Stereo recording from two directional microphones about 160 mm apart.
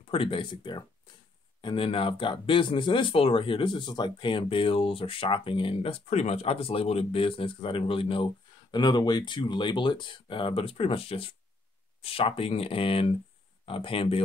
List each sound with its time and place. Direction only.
0.1 s speech: 35° left (ahead or behind)